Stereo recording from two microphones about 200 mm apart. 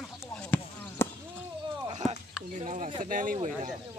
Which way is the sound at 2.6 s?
40° right (ahead or behind).